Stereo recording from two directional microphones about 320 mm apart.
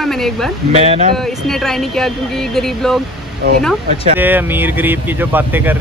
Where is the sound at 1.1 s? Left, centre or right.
Centre.